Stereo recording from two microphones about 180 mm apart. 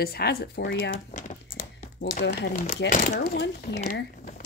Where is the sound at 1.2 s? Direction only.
45° left (ahead or behind).